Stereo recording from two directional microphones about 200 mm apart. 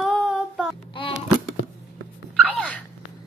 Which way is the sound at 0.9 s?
25° left (ahead or behind).